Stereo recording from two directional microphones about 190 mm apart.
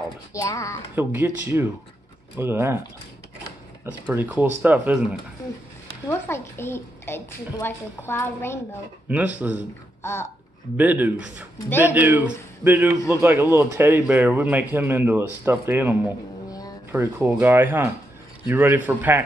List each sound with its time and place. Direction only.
0.3 s a woman's voice: 15° left (ahead or behind)
0.9 s speech: 10° right (ahead or behind)
3.8 s speech: 10° right (ahead or behind)
6.0 s a woman's voice: 15° left (ahead or behind)
9.1 s speech: 10° right (ahead or behind)
10.0 s a woman's voice: 15° left (ahead or behind)
10.8 s speech: 10° right (ahead or behind)
16.4 s a sound: 20° left (ahead or behind)
16.9 s speech: 10° right (ahead or behind)